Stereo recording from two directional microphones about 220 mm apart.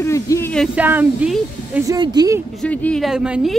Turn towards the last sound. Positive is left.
turn(degrees=-5)  # may be behind; listen again after turning